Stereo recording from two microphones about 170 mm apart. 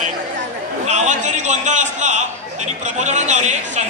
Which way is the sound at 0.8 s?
45° right (ahead or behind).